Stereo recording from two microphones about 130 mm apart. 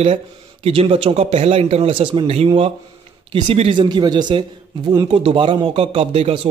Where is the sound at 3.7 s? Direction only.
35° right (ahead or behind).